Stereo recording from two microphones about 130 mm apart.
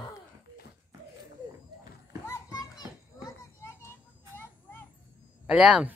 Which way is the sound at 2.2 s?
30° left (ahead or behind).